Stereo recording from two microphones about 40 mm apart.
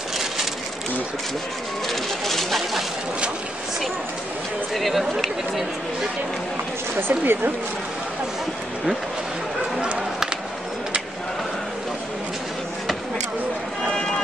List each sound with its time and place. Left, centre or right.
1.9 s a sound: centre
4.7 s speech: centre
7.0 s a woman's voice: right
9.8 s music: right
13.9 s run: centre